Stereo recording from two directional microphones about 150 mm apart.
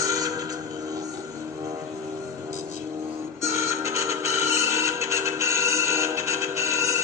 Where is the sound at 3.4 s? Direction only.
20° right (ahead or behind).